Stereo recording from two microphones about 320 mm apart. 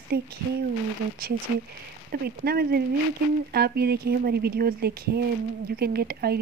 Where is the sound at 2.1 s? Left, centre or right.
Right.